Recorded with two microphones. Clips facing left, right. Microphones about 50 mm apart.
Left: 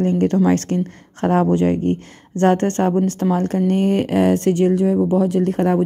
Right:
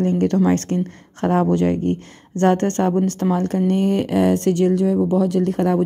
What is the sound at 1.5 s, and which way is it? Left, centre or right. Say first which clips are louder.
Speech: left 1 dB; left.